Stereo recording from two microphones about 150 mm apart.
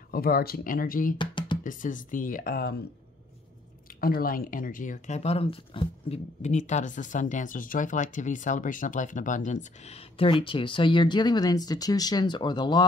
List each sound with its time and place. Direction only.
0.1 s speech: 85° left
1.1 s music: 30° left (ahead or behind)
1.6 s speech: 60° left (ahead or behind); by 2.7 s 85° left
4.0 s speech: 75° left (ahead or behind); by 12.8 s 30° left (ahead or behind)